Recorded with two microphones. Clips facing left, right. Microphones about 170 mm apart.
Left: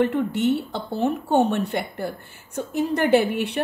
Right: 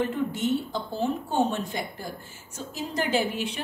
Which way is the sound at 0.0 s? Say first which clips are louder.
Left 6 dB; 65° left (ahead or behind).